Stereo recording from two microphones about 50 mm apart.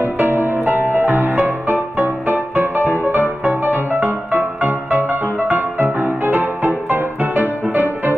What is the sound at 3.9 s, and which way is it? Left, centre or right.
Music, right.